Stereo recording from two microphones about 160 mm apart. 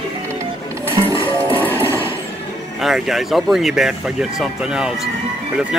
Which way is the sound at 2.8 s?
Centre (ahead or behind).